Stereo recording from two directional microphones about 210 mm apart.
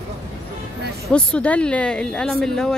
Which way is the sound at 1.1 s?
5° left (ahead or behind).